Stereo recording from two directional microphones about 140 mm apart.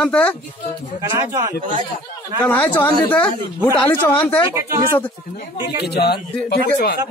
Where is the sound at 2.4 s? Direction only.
15° left (ahead or behind).